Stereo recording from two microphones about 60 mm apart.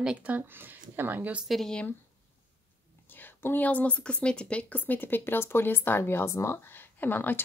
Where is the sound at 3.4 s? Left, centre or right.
Left.